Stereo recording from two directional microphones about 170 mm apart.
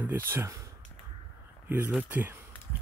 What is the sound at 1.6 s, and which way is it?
Speech, 10° right (ahead or behind).